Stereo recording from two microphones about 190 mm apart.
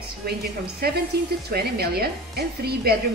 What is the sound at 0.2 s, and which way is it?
A woman's voice, 55° right (ahead or behind).